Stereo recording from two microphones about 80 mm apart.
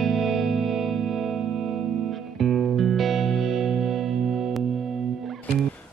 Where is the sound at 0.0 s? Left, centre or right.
Centre.